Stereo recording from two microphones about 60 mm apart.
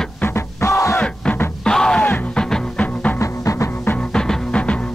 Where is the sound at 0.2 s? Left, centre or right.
Left.